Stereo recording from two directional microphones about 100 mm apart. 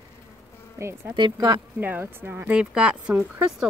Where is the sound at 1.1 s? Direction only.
45° right (ahead or behind).